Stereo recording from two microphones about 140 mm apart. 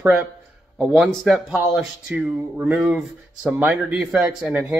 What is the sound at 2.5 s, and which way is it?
Speech, 15° right (ahead or behind).